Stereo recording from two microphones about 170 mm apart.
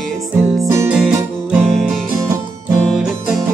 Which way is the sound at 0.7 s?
15° right (ahead or behind).